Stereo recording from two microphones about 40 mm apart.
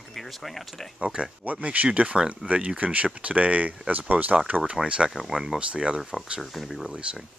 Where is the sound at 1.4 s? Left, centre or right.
Right.